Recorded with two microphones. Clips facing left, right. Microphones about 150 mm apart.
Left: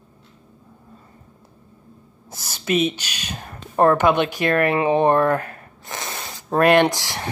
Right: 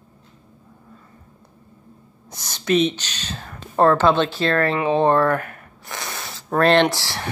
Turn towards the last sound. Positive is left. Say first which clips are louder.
# even
turn(degrees=20)  # may be behind; listen again after turning